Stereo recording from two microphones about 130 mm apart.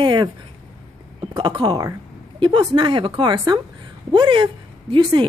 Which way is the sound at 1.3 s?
35° right (ahead or behind).